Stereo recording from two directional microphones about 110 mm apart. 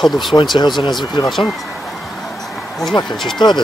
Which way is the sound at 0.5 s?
45° left (ahead or behind).